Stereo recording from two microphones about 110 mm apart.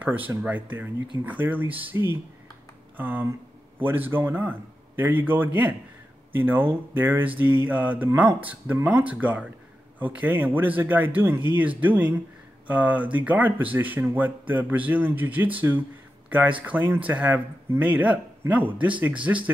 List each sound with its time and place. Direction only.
1.2 s speech: 15° right (ahead or behind)